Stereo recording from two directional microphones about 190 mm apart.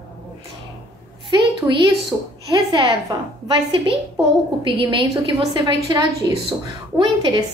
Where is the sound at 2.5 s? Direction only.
25° right (ahead or behind).